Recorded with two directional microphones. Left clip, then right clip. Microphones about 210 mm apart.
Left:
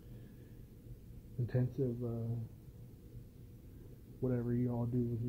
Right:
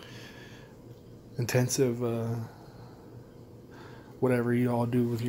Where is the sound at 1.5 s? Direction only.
35° right (ahead or behind).